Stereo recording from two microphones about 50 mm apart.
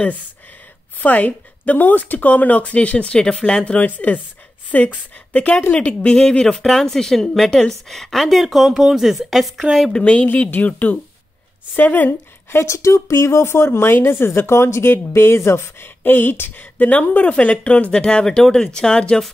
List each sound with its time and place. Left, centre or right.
1.0 s a woman's voice: left; by 9.8 s centre
9.8 s a woman's voice: left
10.5 s speech: left
12.1 s a woman's voice: left
12.6 s speech: left; by 19.2 s centre